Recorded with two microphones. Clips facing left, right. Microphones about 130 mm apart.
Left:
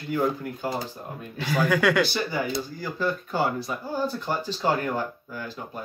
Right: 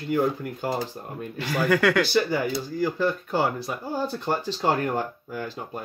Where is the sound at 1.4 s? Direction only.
Centre (ahead or behind).